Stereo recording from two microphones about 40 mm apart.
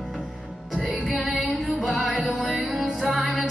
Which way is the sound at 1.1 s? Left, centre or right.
Centre.